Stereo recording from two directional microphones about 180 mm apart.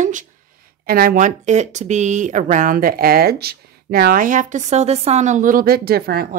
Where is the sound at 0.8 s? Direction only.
55° right (ahead or behind).